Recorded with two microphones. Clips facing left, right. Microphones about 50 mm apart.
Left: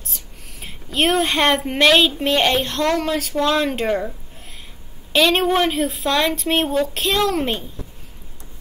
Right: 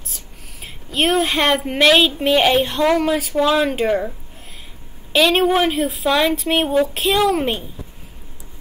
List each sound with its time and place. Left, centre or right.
0.0 s speech: centre
5.1 s speech: centre